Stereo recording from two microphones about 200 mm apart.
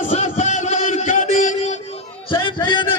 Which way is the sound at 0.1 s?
35° left (ahead or behind).